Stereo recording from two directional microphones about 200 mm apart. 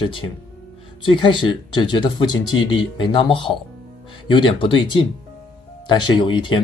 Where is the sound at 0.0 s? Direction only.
25° left (ahead or behind).